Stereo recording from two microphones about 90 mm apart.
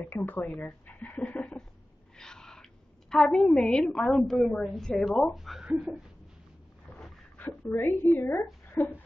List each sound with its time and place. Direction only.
0.0 s speech: 20° left (ahead or behind)
0.8 s a sound: 15° left (ahead or behind)
4.2 s a woman's voice: centre (ahead or behind)
7.3 s speech: 25° left (ahead or behind)